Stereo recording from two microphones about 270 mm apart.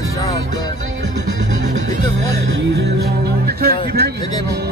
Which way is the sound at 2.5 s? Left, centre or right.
Right.